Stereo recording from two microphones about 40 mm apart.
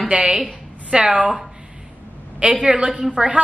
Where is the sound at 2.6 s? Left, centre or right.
Right.